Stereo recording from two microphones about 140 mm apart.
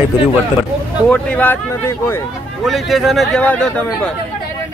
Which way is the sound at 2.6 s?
Centre (ahead or behind).